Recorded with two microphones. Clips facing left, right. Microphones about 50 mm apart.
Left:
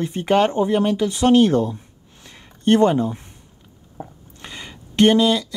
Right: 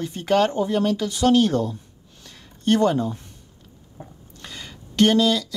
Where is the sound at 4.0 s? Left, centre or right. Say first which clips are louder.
Left 5 dB; left.